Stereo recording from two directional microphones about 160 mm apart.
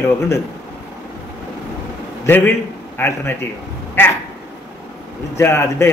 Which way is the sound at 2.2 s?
10° left (ahead or behind).